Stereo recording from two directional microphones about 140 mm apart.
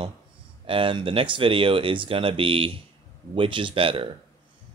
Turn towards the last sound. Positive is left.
turn(degrees=-40)  # may be behind; listen again after turning